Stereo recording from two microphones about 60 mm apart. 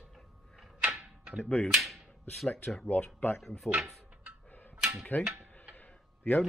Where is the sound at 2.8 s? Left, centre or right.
Left.